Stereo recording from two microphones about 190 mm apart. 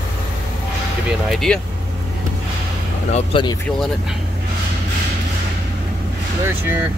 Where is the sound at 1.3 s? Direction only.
Centre (ahead or behind).